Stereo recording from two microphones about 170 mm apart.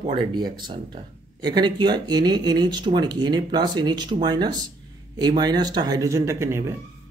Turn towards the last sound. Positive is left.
turn(degrees=-15)  # may be behind; listen again after turning